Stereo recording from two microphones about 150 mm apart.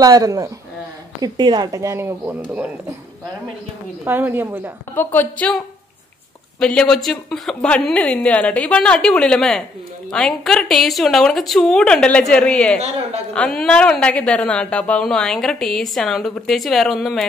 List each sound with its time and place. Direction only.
0.0 s speech: 25° right (ahead or behind)
4.0 s a woman's voice: 15° right (ahead or behind)
4.9 s a woman's voice: 10° left (ahead or behind)
6.6 s a woman's voice: 5° left (ahead or behind)